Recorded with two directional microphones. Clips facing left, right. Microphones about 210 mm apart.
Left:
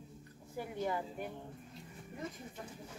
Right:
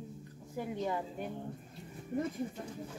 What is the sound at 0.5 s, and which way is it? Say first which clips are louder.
Speech: right 2 dB; 20° right (ahead or behind).